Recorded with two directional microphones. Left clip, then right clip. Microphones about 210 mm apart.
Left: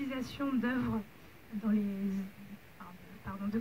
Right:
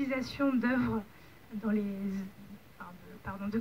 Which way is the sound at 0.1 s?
15° right (ahead or behind).